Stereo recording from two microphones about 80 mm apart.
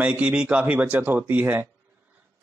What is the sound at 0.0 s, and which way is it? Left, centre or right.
A man's voice, centre.